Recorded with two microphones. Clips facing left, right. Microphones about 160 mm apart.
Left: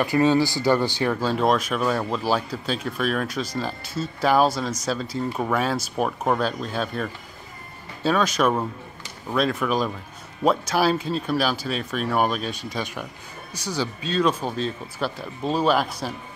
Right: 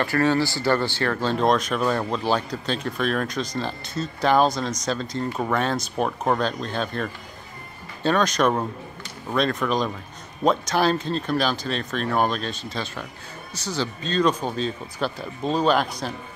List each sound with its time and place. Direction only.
0.0 s speech: 15° left (ahead or behind)